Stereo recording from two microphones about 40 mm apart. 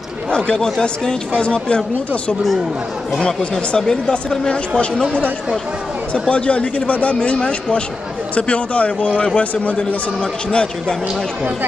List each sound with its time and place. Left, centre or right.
0.7 s speech: centre
3.7 s speech: centre
6.1 s speech: left
10.5 s speech: left